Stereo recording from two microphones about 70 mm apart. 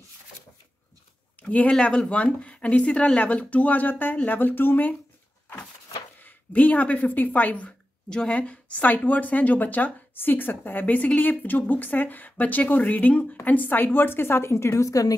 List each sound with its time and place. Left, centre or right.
1.4 s a woman's voice: centre
6.1 s a woman's voice: left